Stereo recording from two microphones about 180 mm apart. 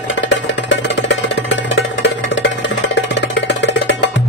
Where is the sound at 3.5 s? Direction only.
85° left.